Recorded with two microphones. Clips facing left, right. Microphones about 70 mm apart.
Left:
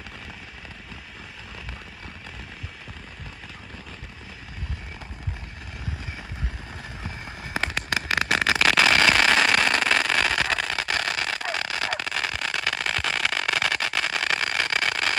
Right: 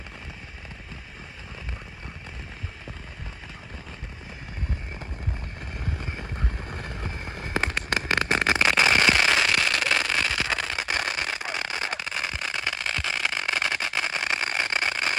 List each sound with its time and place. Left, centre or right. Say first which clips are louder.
5.9 s vehicle: right 2 dB; right
7.3 s fireworks: right 1 dB; right
8.6 s a sound: left 2 dB; centre